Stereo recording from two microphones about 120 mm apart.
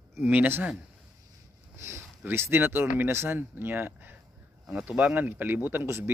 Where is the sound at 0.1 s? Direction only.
15° right (ahead or behind).